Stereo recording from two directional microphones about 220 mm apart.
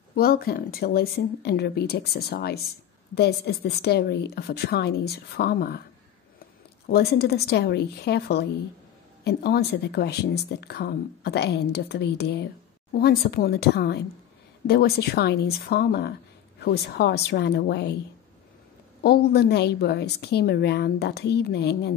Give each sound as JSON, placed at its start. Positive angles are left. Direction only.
{"t": 0.1, "sound": "speech", "side_deg": 45}
{"t": 6.9, "sound": "speech", "side_deg": 45}
{"t": 19.0, "sound": "speech", "side_deg": 45}